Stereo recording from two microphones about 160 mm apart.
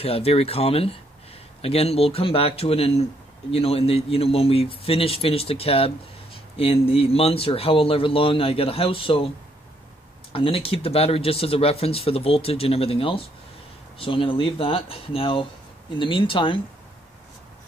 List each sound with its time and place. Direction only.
0.0 s speech: 40° left (ahead or behind)
10.3 s speech: 35° left (ahead or behind)